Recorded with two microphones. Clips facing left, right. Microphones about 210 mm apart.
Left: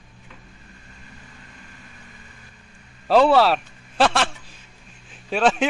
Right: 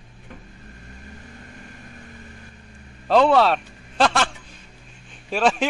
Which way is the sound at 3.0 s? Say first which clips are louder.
Left 1 dB; 5° left (ahead or behind).